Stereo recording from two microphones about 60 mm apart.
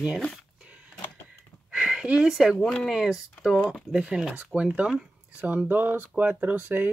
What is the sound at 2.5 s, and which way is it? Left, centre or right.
Speech, centre.